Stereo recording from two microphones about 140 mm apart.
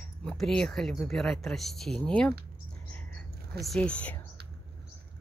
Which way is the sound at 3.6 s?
5° left (ahead or behind).